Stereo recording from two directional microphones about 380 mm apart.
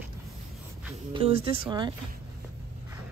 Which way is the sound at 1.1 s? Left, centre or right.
Centre.